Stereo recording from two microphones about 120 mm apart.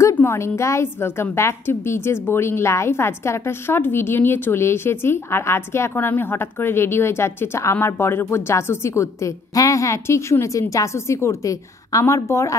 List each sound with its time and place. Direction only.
0.2 s a woman's voice: 20° left (ahead or behind)